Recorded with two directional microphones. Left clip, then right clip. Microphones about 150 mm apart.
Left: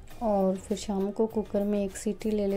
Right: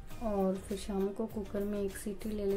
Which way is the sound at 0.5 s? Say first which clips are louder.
Left 6 dB; 40° left (ahead or behind).